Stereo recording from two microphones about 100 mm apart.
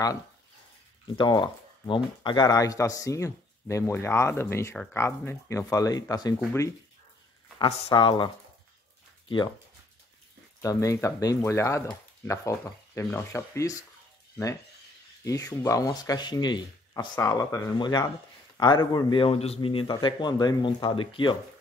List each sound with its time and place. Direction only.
1.1 s speech: 50° left (ahead or behind)
2.4 s a man's voice: 35° left (ahead or behind)
5.7 s a man's voice: 35° left (ahead or behind)
7.5 s speech: 55° left (ahead or behind)
10.6 s a man's voice: 35° left (ahead or behind)
15.2 s a man's voice: 35° left (ahead or behind)
17.2 s a man's voice: 30° left (ahead or behind)
17.7 s speech: 45° left (ahead or behind)
19.2 s speech: 90° left; by 21.4 s 60° left (ahead or behind)